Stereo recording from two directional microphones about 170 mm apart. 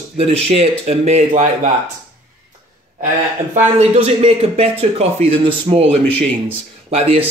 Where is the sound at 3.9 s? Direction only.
35° right (ahead or behind).